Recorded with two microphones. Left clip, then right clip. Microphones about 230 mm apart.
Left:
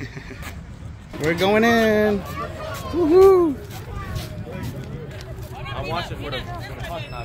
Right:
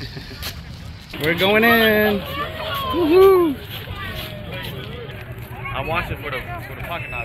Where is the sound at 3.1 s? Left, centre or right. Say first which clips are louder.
Even; centre.